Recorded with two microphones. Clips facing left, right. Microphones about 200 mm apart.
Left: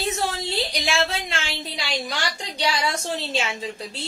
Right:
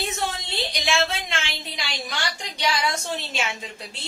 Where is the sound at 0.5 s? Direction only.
35° left (ahead or behind).